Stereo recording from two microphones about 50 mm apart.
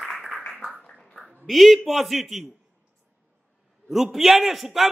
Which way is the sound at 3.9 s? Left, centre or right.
Centre.